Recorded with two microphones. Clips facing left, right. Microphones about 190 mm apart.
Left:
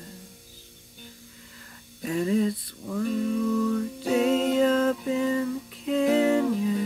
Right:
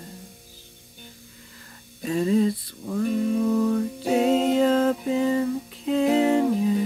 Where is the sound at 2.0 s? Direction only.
30° right (ahead or behind).